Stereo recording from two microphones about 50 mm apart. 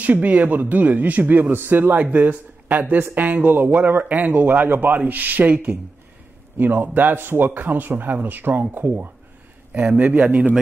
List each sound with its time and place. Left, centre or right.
0.0 s a man's voice: right
9.8 s speech: right